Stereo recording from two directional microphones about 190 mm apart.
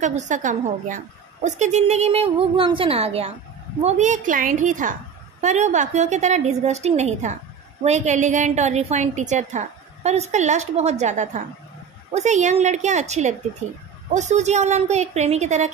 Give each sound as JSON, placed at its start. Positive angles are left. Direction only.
{"t": 0.0, "sound": "a woman's voice", "side_deg": -40}